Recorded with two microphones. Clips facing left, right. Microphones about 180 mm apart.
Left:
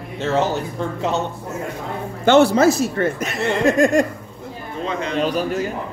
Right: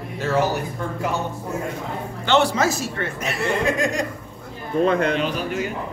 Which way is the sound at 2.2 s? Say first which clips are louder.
Left 6 dB; 45° left (ahead or behind).